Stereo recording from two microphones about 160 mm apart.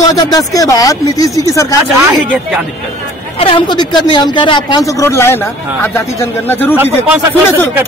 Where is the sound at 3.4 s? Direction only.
35° left (ahead or behind); by 6.7 s 15° left (ahead or behind).